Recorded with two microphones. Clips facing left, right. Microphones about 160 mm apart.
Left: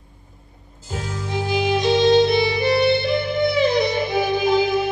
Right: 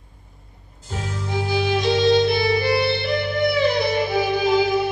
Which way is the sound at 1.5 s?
20° left (ahead or behind).